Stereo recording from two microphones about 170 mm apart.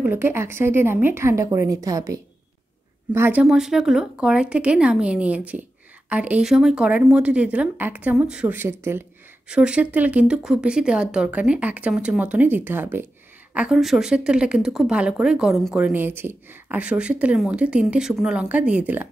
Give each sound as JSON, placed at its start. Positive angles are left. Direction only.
{"t": 0.0, "sound": "a woman's voice", "side_deg": -15}